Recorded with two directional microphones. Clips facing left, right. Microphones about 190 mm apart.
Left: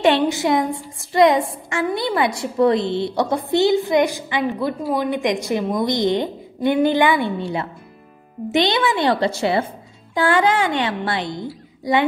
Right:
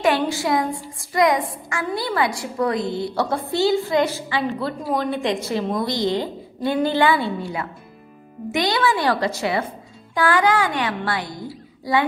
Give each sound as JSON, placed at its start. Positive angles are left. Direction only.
{"t": 0.0, "sound": "a woman's voice", "side_deg": 25}